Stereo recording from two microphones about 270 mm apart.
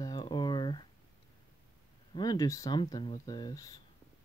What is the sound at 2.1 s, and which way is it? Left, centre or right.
Speech, centre.